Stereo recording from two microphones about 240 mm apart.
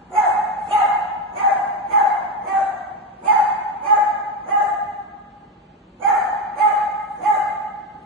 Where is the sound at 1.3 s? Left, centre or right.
Right.